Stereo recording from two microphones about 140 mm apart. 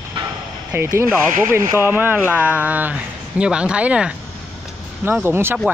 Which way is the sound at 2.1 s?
15° left (ahead or behind).